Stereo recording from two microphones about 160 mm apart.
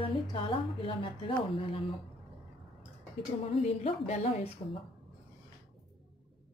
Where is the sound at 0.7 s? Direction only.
30° left (ahead or behind).